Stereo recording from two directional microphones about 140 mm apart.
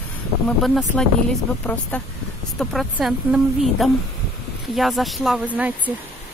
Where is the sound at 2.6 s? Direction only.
Centre (ahead or behind).